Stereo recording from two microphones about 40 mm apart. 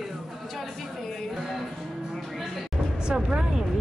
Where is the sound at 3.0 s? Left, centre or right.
Right.